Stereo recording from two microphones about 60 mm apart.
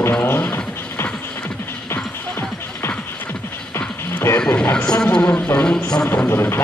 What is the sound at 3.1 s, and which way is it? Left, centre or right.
Music, left.